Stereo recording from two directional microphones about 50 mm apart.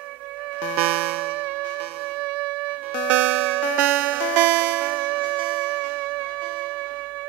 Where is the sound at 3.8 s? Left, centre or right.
Right.